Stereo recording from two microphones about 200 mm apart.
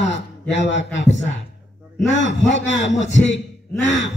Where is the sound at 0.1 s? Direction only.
60° left (ahead or behind).